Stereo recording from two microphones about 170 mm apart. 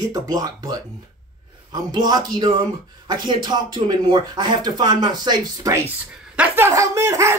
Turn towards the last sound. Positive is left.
turn(degrees=-15)  # may be behind; listen again after turning